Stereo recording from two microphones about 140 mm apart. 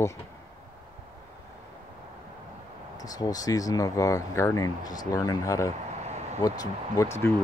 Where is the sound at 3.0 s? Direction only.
25° left (ahead or behind).